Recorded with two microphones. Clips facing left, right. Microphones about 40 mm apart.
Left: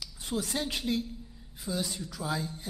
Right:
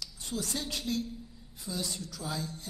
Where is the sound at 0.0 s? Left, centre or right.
Centre.